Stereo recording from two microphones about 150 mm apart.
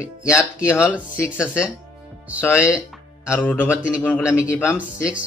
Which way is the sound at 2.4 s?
15° left (ahead or behind).